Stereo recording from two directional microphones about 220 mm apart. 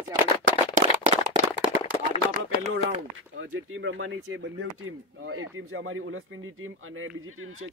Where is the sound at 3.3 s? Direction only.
65° right (ahead or behind).